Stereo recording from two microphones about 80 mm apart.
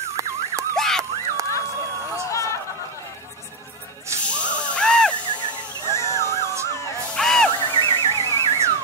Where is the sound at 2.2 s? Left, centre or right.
Left.